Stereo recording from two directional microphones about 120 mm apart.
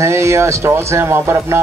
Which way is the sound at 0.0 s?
25° right (ahead or behind).